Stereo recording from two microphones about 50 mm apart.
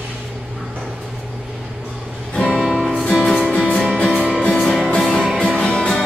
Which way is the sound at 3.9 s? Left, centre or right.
Centre.